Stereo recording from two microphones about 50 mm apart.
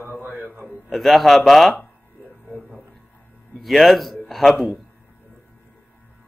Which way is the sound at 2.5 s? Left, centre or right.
Left.